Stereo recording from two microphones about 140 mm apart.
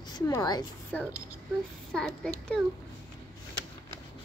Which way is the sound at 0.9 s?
10° left (ahead or behind).